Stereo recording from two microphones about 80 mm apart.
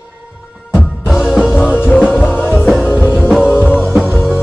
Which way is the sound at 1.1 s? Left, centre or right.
Centre.